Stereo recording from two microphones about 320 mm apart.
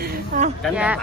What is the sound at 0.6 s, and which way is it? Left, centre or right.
Speech, centre.